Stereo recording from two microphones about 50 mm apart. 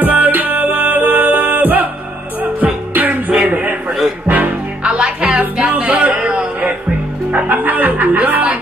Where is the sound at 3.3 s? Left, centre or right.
Right.